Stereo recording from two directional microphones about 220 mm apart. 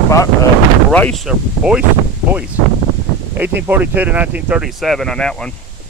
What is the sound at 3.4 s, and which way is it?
Speech, 10° right (ahead or behind).